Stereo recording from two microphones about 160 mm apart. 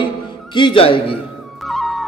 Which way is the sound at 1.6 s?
Centre (ahead or behind).